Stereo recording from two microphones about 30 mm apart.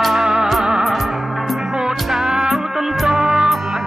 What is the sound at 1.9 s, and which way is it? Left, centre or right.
Music, centre.